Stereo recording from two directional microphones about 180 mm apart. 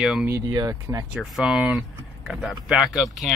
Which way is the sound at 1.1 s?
Centre (ahead or behind).